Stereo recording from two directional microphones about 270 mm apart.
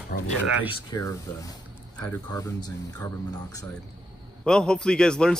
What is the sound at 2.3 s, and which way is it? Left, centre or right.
A man's voice, centre.